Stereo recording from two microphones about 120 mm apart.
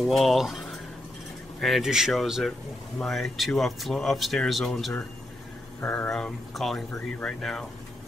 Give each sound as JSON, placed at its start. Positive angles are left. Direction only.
{"t": 0.0, "sound": "speech", "side_deg": 0}